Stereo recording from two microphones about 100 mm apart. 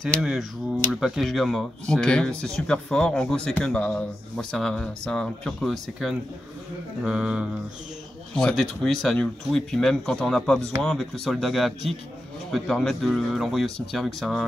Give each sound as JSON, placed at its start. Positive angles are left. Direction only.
{"t": 0.0, "sound": "speech", "side_deg": 0}
{"t": 7.0, "sound": "music", "side_deg": -10}
{"t": 8.4, "sound": "speech", "side_deg": 5}